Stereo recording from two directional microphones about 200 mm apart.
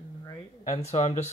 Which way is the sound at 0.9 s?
35° left (ahead or behind).